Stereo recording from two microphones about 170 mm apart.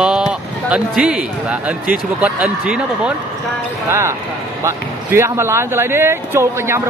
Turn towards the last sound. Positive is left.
turn(degrees=-15)  # may be behind; listen again after turning